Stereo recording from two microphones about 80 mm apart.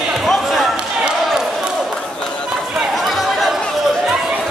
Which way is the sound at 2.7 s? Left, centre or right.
Centre.